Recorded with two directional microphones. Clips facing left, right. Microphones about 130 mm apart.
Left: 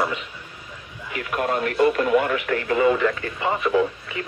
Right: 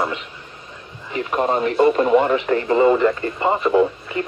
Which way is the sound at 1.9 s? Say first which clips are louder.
Right 4 dB; 30° right (ahead or behind).